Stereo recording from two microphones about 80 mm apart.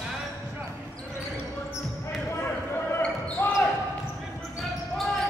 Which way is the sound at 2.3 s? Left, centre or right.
Left.